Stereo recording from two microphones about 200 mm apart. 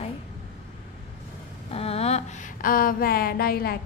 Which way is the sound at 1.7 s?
30° left (ahead or behind).